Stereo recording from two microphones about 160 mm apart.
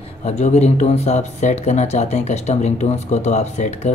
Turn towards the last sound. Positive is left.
turn(degrees=45)  # may be behind; listen again after turning